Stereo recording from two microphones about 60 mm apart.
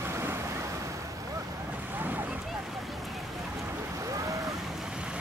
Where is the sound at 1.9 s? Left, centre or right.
Right.